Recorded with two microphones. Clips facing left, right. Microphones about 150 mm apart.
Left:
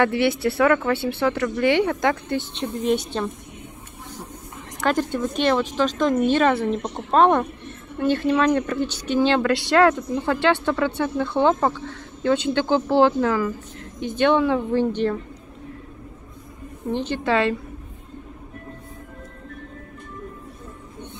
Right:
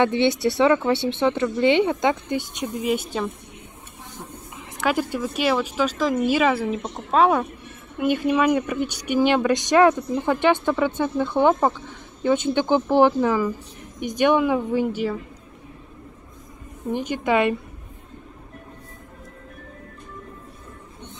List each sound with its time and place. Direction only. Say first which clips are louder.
0.0 s a woman's voice: even; 20° right (ahead or behind); by 3.3 s 5° right (ahead or behind)
4.7 s a woman's voice: left 1 dB; 5° right (ahead or behind)
16.9 s a woman's voice: even; 10° right (ahead or behind)